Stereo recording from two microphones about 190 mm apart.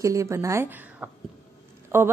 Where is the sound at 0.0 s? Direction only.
15° right (ahead or behind).